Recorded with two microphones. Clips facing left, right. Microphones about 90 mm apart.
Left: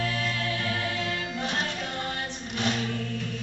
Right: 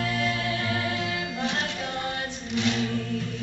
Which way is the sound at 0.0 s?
5° right (ahead or behind).